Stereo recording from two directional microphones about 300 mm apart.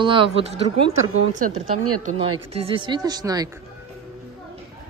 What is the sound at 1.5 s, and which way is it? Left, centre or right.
Speech, right.